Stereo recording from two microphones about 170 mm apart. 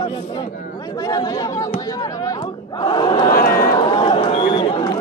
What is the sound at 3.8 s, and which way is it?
Run, 25° left (ahead or behind).